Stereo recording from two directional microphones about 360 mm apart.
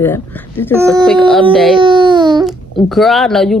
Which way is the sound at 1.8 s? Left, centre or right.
Centre.